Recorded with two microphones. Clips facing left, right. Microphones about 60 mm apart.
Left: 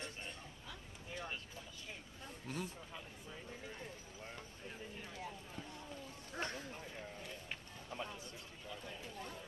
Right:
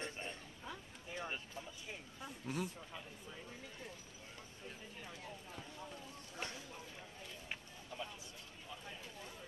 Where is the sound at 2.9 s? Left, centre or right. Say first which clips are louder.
Even; centre.